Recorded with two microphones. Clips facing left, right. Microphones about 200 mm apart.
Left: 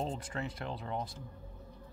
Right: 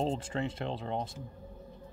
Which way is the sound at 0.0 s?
25° right (ahead or behind).